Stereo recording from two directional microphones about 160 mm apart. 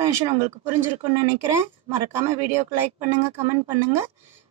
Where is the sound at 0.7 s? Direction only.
15° right (ahead or behind).